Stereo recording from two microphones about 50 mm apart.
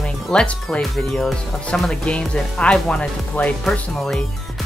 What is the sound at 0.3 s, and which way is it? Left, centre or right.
Speech, centre.